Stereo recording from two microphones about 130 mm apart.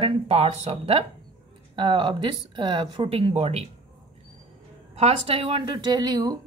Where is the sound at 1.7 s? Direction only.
40° right (ahead or behind); by 3.6 s 55° right (ahead or behind).